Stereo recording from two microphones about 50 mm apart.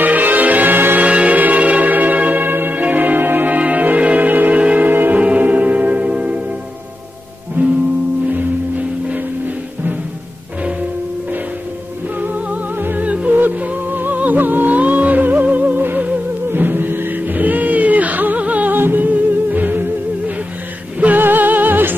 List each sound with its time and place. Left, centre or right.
0.0 s music: right
1.0 s music: right
7.6 s music: right
12.7 s music: right
13.0 s music: right